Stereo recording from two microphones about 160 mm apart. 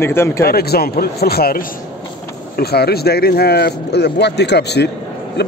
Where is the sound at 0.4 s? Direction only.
75° left (ahead or behind).